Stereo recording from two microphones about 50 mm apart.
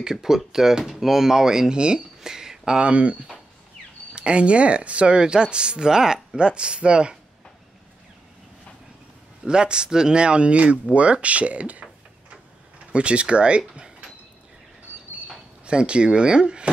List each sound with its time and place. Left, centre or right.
0.0 s speech: centre
9.5 s speech: centre
12.9 s speech: right
15.6 s speech: centre